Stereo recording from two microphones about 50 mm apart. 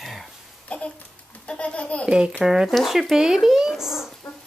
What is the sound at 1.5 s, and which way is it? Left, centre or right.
Speech, left.